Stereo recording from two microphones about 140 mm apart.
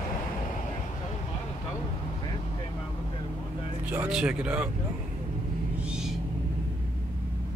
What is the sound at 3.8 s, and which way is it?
Speech, 10° right (ahead or behind).